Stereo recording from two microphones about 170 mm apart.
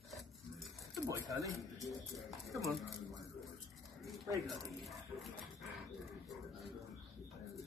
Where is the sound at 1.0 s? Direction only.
20° right (ahead or behind).